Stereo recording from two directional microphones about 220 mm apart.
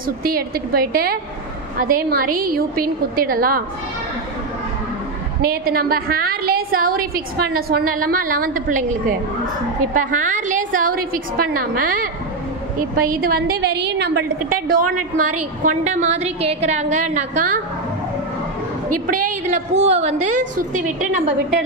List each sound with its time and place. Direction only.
0.2 s a woman's voice: 40° right (ahead or behind)
5.4 s a woman's voice: 40° right (ahead or behind)
9.9 s a woman's voice: 35° right (ahead or behind)
19.2 s a woman's voice: 35° right (ahead or behind)